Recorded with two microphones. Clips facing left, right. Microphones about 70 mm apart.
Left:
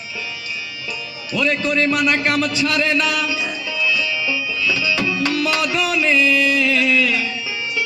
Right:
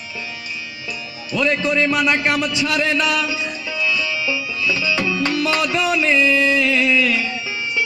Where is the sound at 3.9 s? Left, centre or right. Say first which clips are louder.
Right 1 dB; right.